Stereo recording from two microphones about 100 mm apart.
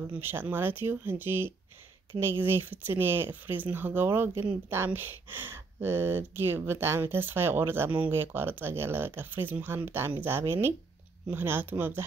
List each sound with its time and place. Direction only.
0.1 s speech: 20° right (ahead or behind)